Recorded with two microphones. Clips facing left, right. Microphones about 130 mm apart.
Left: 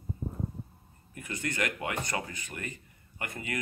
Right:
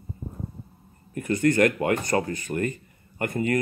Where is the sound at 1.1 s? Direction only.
50° right (ahead or behind).